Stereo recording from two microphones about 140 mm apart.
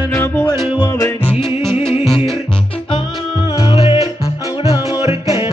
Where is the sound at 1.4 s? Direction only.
5° left (ahead or behind).